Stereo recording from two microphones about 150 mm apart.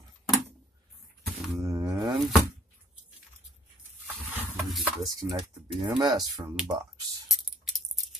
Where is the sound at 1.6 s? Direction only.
20° right (ahead or behind).